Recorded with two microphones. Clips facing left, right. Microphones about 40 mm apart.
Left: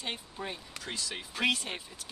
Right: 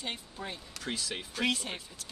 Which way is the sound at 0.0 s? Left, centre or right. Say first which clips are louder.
Left 1 dB; centre.